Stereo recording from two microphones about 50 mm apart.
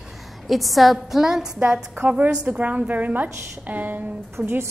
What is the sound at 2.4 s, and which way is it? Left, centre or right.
A woman's voice, right.